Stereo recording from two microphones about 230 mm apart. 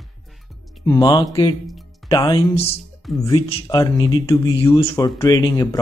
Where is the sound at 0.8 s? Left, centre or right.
Centre.